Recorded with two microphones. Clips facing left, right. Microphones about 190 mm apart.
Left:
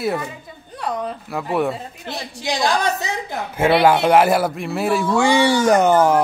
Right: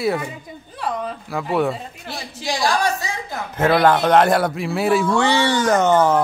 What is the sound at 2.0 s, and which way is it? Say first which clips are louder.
A woman's voice: left 2 dB; 20° left (ahead or behind).